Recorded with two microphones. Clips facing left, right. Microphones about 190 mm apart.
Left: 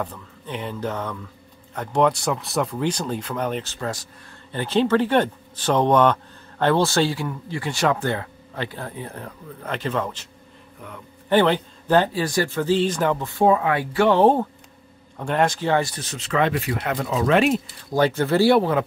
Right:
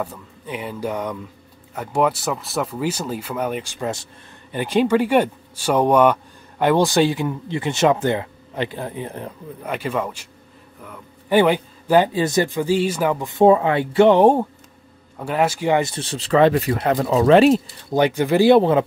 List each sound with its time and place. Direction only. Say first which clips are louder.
0.0 s speech: right 2 dB; 10° right (ahead or behind)
13.3 s speech: right 6 dB; 25° right (ahead or behind)
15.9 s speech: right 7 dB; 30° right (ahead or behind)
17.9 s speech: right 2 dB; 15° right (ahead or behind)